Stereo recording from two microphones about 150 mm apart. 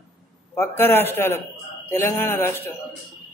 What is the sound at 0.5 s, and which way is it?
A man's voice, 15° left (ahead or behind).